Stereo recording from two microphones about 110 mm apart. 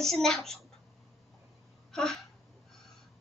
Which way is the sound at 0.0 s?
5° left (ahead or behind).